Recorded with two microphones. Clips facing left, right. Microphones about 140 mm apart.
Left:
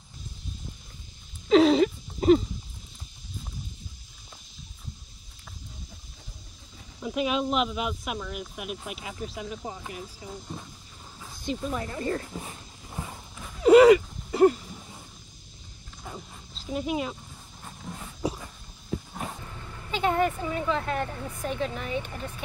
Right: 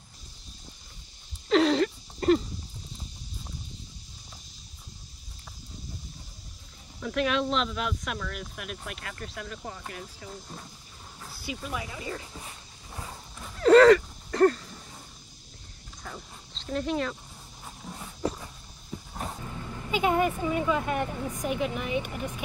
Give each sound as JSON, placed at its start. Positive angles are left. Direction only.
{"t": 1.5, "sound": "a sound", "side_deg": 0}
{"t": 7.0, "sound": "speech", "side_deg": 5}
{"t": 11.2, "sound": "speech", "side_deg": -5}
{"t": 12.4, "sound": "dog", "side_deg": 25}
{"t": 13.4, "sound": "a sound", "side_deg": 10}
{"t": 16.0, "sound": "dog", "side_deg": 5}
{"t": 17.6, "sound": "dog", "side_deg": -5}
{"t": 19.1, "sound": "vehicle", "side_deg": -5}
{"t": 19.9, "sound": "speech", "side_deg": -10}